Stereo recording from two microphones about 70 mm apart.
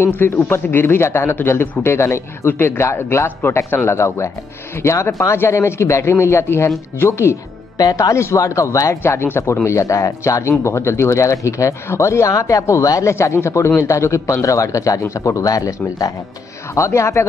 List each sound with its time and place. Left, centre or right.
0.0 s a man's voice: left
9.0 s a man's voice: left
16.7 s a man's voice: left